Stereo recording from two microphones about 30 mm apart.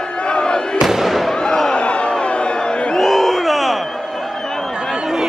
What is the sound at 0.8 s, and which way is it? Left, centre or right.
Fireworks, centre.